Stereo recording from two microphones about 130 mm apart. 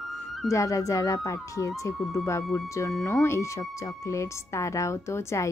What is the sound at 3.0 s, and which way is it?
A woman's voice, 20° left (ahead or behind).